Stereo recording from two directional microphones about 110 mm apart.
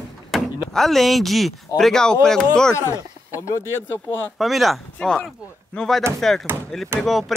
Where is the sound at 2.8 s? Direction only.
25° left (ahead or behind).